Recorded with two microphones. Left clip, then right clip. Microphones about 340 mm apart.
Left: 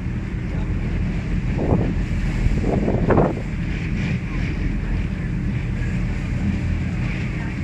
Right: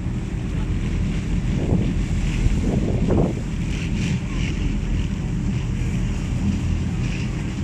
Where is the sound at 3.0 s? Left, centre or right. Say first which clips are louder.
Left 5 dB; left.